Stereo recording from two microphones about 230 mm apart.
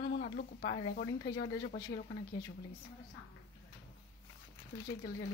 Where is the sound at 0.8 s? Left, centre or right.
Left.